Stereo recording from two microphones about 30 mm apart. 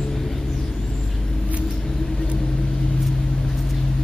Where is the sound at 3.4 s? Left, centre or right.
Centre.